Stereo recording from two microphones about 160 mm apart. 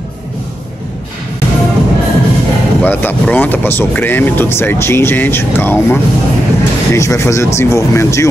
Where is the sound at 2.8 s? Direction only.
10° left (ahead or behind).